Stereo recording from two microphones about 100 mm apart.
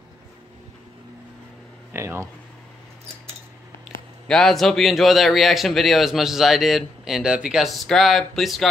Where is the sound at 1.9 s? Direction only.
25° right (ahead or behind).